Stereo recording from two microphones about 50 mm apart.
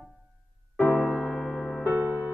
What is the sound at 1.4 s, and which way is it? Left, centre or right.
Music, centre.